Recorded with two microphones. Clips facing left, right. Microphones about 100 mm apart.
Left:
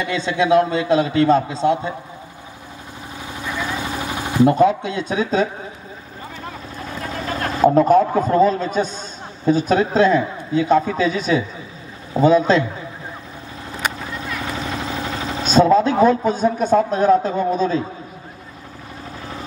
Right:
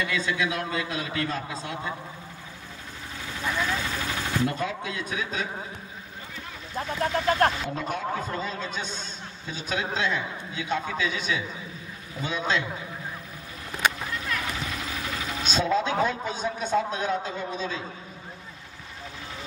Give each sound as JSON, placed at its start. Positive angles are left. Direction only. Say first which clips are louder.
{"t": 0.0, "sound": "a man's voice", "louder": "left 7 dB", "side_deg": 25}
{"t": 3.3, "sound": "a sound", "louder": "left 2 dB", "side_deg": 15}
{"t": 7.5, "sound": "a man's voice", "louder": "left 18 dB", "side_deg": 45}
{"t": 14.6, "sound": "speech", "louder": "left 8 dB", "side_deg": 30}